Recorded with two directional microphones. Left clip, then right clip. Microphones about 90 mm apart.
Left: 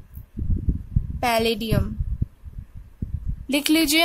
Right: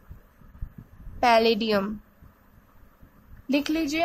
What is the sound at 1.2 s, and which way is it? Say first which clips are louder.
Speech: right 2 dB; 25° left (ahead or behind).